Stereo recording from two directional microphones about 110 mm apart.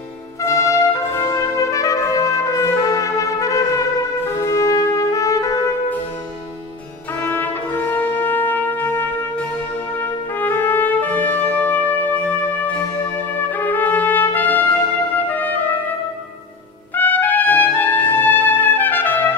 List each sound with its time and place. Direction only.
0.4 s trumpet: 25° left (ahead or behind)
4.3 s music: 30° left (ahead or behind)
7.2 s brass instrument: 15° left (ahead or behind)
9.9 s music: 15° left (ahead or behind)
16.9 s trumpet: 15° left (ahead or behind)